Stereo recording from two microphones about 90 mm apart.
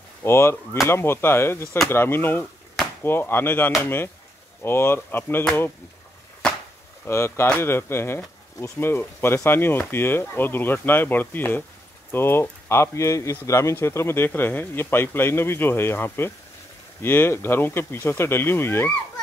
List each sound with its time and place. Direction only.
0.2 s speech: 30° left (ahead or behind)
6.4 s chop: 10° left (ahead or behind)
7.1 s speech: 30° left (ahead or behind)